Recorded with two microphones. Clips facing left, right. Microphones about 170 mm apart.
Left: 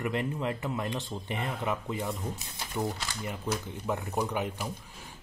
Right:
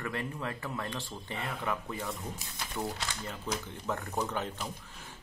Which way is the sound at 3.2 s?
15° left (ahead or behind).